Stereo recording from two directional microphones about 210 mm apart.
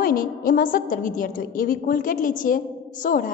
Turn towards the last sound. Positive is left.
turn(degrees=40)  # may be behind; listen again after turning